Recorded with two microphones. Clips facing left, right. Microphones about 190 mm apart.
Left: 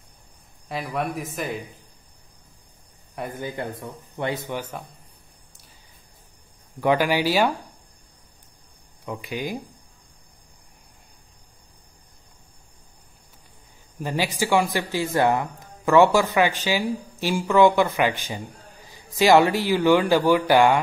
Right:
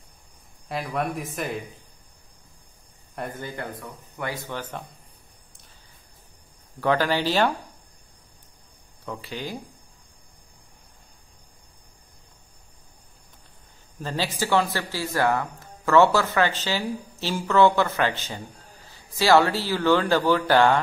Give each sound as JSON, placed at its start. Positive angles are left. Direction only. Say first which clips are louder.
{"t": 0.7, "sound": "speech", "louder": "even", "side_deg": 0}
{"t": 3.3, "sound": "speech", "louder": "left 3 dB", "side_deg": 15}
{"t": 4.6, "sound": "speech", "louder": "left 2 dB", "side_deg": 10}
{"t": 6.8, "sound": "speech", "louder": "left 2 dB", "side_deg": 15}
{"t": 9.0, "sound": "speech", "louder": "left 3 dB", "side_deg": 15}
{"t": 13.9, "sound": "speech", "louder": "left 3 dB", "side_deg": 15}